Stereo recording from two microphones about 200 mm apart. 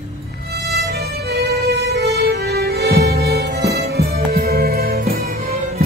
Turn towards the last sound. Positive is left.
turn(degrees=-50)  # may be behind; listen again after turning